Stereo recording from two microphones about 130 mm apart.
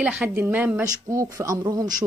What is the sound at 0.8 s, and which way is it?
Speech, 25° right (ahead or behind).